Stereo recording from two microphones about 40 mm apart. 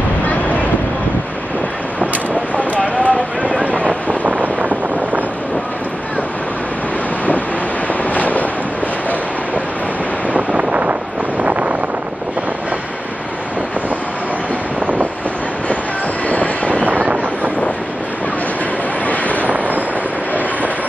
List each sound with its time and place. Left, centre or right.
2.5 s a sound: left
4.2 s wind noise: right
8.0 s vehicle: left
10.5 s wind noise: right
16.3 s vehicle: left
16.8 s vehicle: right
19.0 s vehicle: left
19.4 s vehicle: right